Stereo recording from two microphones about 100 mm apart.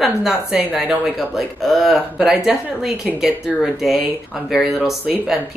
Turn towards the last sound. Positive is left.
turn(degrees=-5)  # may be behind; listen again after turning